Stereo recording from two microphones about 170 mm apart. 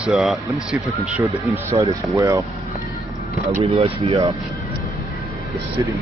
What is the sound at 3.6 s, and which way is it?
Speech, 35° right (ahead or behind).